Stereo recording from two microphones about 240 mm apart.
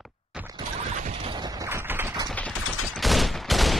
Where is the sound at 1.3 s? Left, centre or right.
Centre.